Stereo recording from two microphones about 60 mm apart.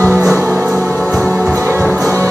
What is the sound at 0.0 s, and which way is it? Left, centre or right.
Music, right.